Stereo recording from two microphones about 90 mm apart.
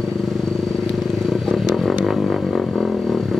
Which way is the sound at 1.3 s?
Centre (ahead or behind).